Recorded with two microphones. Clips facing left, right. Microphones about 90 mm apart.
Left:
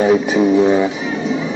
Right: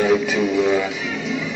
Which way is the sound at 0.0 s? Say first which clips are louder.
Left 5 dB; 35° left (ahead or behind).